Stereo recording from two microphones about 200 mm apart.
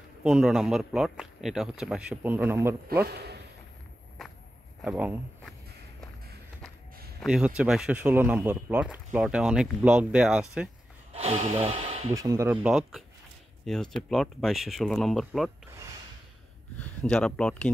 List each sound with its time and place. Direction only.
0.2 s speech: 5° right (ahead or behind)
3.1 s a man's voice: 55° right (ahead or behind)
4.8 s speech: 5° right (ahead or behind)
7.2 s speech: 5° right (ahead or behind)
11.1 s speech: 30° right (ahead or behind)
12.1 s speech: 15° right (ahead or behind)
12.6 s speech: centre (ahead or behind)
16.7 s speech: 5° left (ahead or behind)